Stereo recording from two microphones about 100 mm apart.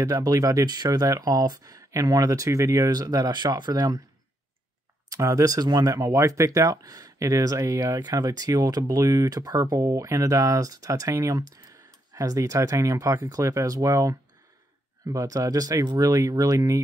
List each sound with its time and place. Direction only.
0.0 s speech: 35° right (ahead or behind)
5.1 s speech: 35° right (ahead or behind)